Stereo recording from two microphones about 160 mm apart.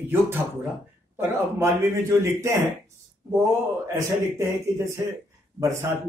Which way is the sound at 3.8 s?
15° right (ahead or behind).